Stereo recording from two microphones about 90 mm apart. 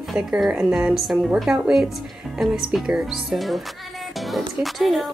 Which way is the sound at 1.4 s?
5° right (ahead or behind).